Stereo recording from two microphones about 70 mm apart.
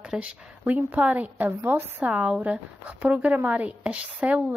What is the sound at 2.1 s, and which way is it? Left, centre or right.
A woman's voice, centre.